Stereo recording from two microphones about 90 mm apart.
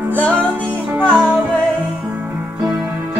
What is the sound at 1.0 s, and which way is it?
Music, 5° left (ahead or behind).